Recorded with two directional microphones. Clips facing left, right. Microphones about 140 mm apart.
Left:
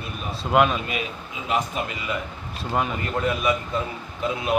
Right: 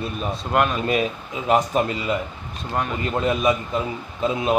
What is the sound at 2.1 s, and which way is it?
Speech, 25° right (ahead or behind).